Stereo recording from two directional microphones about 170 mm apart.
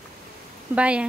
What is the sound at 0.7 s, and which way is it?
Speech, 5° right (ahead or behind).